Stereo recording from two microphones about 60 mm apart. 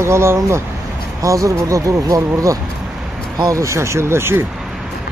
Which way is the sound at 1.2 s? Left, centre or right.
Right.